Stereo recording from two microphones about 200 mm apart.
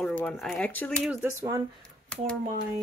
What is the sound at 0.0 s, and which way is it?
Speech, 5° left (ahead or behind).